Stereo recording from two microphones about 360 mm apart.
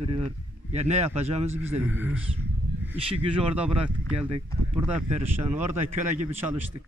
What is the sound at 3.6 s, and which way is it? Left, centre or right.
Speech, centre.